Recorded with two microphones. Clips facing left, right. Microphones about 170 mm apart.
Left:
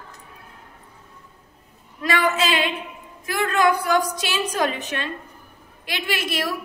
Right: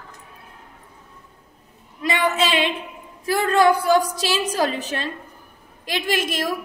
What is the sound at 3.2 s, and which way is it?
A woman's voice, 35° right (ahead or behind).